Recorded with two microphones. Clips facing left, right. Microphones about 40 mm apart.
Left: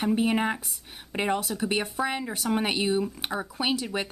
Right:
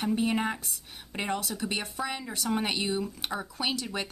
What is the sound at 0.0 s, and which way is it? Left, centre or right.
A woman's voice, centre.